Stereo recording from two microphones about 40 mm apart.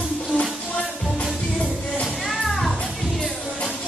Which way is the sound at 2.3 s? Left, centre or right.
Centre.